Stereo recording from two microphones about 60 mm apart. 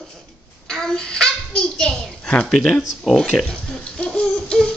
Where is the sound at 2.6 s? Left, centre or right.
Centre.